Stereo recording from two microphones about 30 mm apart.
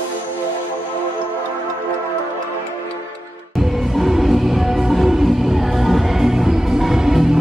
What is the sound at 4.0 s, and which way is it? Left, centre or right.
Music, centre.